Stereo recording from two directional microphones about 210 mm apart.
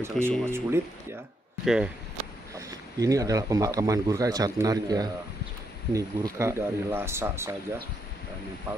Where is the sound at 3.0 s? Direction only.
15° right (ahead or behind).